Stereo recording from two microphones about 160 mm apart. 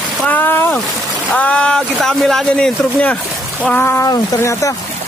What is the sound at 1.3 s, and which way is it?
Speech, 5° left (ahead or behind).